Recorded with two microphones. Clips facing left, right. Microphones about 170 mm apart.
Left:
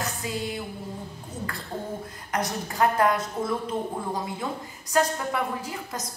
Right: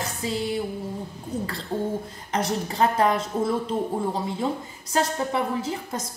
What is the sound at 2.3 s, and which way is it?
A woman's voice, 25° right (ahead or behind).